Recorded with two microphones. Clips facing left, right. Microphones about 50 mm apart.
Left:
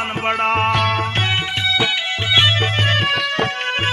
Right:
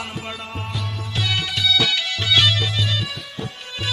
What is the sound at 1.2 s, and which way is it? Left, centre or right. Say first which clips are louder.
Music: left 3 dB; left.